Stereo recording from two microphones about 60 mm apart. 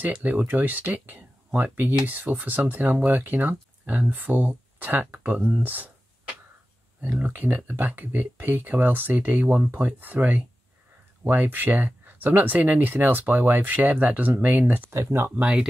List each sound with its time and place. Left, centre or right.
0.0 s speech: right
7.0 s speech: right